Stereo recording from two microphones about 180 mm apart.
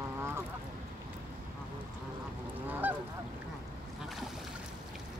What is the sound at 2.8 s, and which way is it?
Goose, 10° right (ahead or behind).